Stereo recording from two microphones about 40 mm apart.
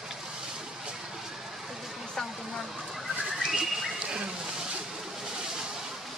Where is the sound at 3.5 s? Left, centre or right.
Centre.